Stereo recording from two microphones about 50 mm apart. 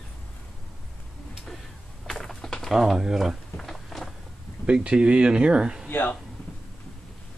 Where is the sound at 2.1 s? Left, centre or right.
Centre.